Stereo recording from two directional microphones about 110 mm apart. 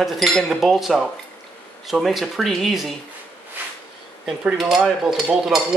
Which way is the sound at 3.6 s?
15° right (ahead or behind).